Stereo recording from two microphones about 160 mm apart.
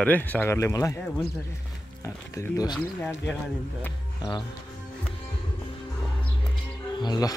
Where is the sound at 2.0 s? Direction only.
20° left (ahead or behind).